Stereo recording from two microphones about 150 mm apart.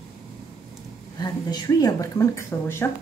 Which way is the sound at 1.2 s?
25° left (ahead or behind).